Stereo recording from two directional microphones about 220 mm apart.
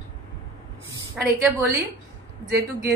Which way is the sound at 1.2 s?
5° right (ahead or behind).